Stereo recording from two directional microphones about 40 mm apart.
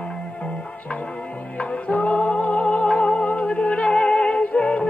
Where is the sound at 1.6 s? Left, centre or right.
Left.